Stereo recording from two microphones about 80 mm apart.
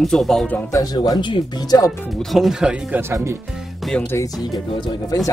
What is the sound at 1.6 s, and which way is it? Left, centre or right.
Speech, left.